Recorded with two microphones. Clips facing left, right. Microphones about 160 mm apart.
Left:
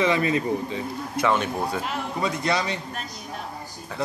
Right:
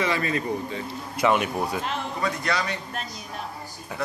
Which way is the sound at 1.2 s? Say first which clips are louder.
Right 1 dB; 10° right (ahead or behind).